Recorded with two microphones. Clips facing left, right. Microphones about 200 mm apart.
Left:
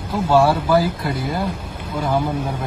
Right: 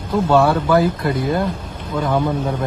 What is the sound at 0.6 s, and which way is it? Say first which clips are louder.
Speech: right 2 dB; 10° left (ahead or behind).